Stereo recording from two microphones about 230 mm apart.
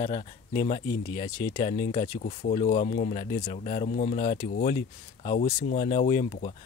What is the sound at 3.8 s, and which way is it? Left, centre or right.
Speech, left.